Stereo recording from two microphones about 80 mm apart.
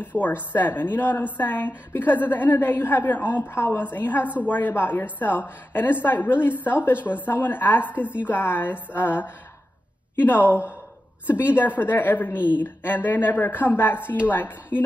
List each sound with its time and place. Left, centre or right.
0.1 s a woman's voice: left